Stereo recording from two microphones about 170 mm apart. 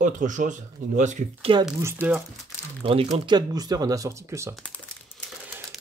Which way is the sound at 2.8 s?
35° right (ahead or behind).